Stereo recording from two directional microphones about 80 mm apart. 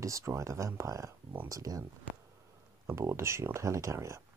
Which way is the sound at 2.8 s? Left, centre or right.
Right.